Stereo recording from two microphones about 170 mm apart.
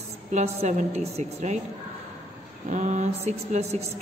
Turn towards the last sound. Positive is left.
turn(degrees=-40)  # may be behind; listen again after turning